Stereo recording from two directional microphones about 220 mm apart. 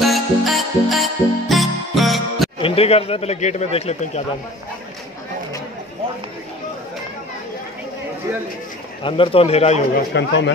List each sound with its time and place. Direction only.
0.0 s music: centre (ahead or behind)
2.6 s speech: 25° left (ahead or behind)
9.0 s speech: 25° left (ahead or behind)
9.9 s a man's voice: 50° left (ahead or behind)